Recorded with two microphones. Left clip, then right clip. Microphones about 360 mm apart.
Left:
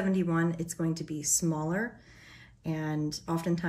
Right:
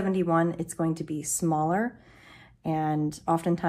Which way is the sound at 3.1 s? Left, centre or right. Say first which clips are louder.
Right 7 dB; centre.